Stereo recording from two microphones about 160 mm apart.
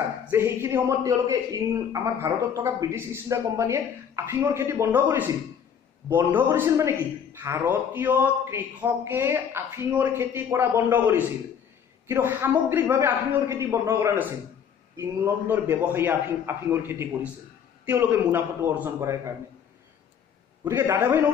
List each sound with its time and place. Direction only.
0.3 s a man's voice: 15° right (ahead or behind)
20.6 s a man's voice: 15° right (ahead or behind)